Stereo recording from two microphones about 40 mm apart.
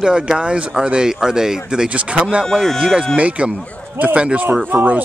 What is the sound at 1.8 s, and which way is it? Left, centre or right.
Speech, right.